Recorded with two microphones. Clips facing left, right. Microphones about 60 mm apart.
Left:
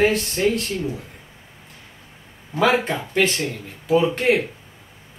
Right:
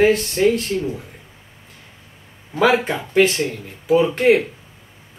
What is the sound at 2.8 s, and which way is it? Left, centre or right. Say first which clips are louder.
Speech: right 4 dB; centre.